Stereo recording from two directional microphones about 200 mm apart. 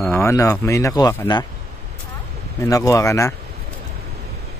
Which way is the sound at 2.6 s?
15° left (ahead or behind).